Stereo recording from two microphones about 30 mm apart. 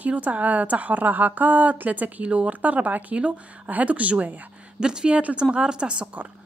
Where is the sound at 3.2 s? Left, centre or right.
Right.